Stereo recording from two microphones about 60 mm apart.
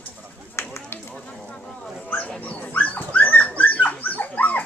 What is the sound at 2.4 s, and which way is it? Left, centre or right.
Dog, left.